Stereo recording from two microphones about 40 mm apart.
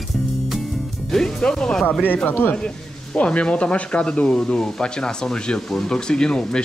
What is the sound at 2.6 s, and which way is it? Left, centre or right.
Speech, left.